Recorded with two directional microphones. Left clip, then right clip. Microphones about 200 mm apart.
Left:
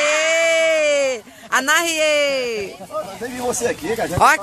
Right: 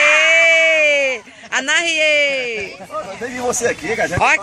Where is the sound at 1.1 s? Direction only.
20° left (ahead or behind).